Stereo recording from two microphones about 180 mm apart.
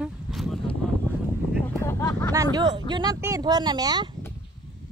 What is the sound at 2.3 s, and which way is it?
Speech, 20° right (ahead or behind).